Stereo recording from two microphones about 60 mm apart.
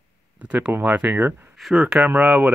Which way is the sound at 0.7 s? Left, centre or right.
Right.